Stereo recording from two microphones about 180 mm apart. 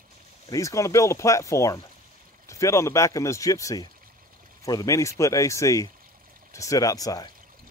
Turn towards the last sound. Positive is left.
turn(degrees=20)  # may be behind; listen again after turning